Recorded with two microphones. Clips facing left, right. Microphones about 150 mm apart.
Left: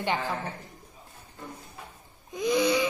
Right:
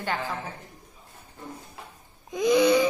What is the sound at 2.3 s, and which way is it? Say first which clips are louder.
Babbling: right 5 dB; 80° right.